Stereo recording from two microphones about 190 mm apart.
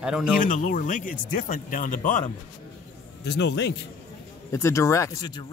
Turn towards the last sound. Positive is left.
turn(degrees=20)  # may be behind; listen again after turning